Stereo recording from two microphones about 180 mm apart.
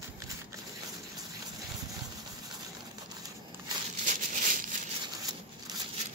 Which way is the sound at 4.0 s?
45° right (ahead or behind).